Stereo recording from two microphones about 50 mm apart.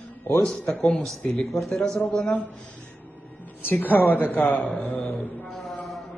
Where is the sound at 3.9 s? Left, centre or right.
Left.